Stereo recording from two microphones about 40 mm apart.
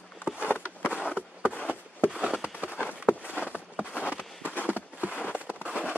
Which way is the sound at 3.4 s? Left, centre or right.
Right.